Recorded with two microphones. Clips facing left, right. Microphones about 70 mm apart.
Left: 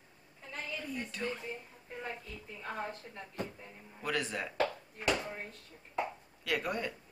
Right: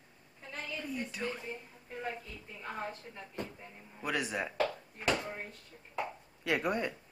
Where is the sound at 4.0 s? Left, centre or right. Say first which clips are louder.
Right 1 dB; centre.